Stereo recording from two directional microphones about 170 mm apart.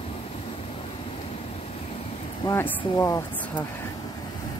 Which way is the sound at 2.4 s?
15° left (ahead or behind).